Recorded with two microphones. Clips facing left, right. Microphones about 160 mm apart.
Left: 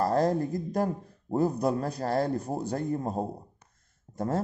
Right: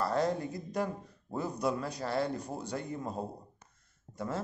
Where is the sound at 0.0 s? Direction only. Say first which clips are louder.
Left 5 dB; 40° left (ahead or behind).